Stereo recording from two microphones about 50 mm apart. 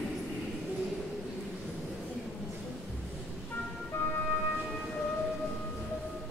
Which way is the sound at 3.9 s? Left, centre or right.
Left.